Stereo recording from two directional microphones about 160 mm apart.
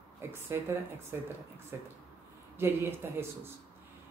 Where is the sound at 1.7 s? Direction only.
15° right (ahead or behind).